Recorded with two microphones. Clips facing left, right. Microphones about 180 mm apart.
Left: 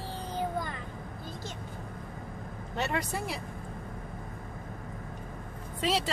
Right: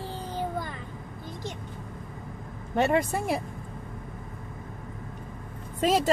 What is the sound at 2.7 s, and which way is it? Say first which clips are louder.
Speech: right 8 dB; 50° right (ahead or behind).